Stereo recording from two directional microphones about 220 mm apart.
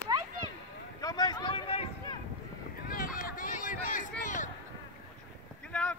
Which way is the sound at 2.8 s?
40° left (ahead or behind).